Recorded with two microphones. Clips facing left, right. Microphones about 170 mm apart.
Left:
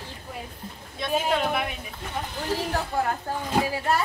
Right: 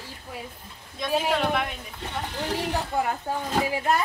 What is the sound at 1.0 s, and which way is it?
Speech, 5° left (ahead or behind).